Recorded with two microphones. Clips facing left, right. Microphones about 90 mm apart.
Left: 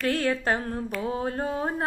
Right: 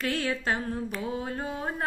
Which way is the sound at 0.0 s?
50° left (ahead or behind).